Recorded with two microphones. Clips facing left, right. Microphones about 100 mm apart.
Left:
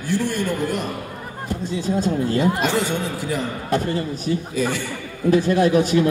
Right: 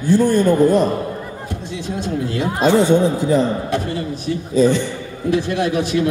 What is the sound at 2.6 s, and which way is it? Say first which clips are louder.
Speech: right 8 dB; 35° right (ahead or behind).